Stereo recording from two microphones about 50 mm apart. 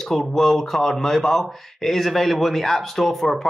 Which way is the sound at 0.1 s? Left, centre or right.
Centre.